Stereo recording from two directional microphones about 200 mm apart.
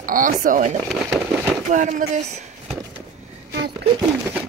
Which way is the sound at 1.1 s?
Centre (ahead or behind).